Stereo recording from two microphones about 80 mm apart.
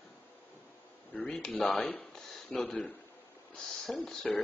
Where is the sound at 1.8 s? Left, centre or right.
Centre.